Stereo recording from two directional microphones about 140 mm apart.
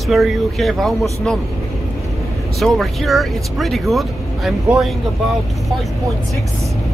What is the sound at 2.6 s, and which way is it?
Speech, centre (ahead or behind).